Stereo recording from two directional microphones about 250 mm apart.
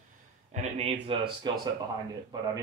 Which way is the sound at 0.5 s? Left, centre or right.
Right.